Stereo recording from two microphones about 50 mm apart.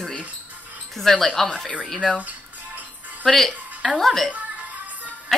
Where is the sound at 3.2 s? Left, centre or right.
Centre.